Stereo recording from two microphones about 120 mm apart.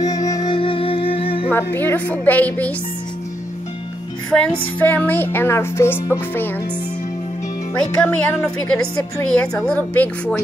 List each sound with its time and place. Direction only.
0.0 s music: 30° left (ahead or behind); by 1.5 s 50° left (ahead or behind)
1.5 s a woman's voice: 15° left (ahead or behind)
4.3 s a woman's voice: 10° left (ahead or behind)
7.7 s a woman's voice: 10° left (ahead or behind)